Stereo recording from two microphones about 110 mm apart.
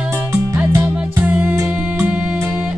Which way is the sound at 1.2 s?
10° right (ahead or behind).